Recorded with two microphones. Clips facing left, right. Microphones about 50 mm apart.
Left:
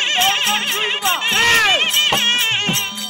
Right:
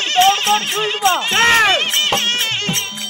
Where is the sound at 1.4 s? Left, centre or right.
Centre.